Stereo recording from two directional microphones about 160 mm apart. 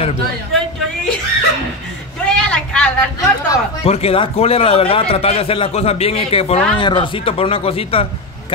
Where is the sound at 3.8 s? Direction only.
40° left (ahead or behind).